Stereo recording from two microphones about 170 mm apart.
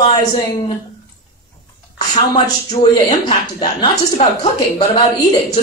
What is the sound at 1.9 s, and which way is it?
A man's voice, 25° left (ahead or behind).